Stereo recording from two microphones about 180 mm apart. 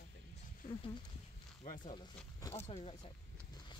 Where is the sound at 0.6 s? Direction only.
50° left (ahead or behind).